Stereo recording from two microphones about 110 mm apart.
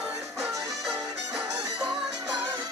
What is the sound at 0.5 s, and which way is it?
Music, 30° right (ahead or behind).